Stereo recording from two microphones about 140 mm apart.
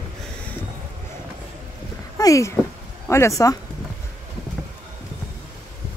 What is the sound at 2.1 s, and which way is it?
Speech, 25° left (ahead or behind).